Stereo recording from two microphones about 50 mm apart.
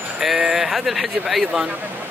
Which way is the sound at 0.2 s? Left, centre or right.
Centre.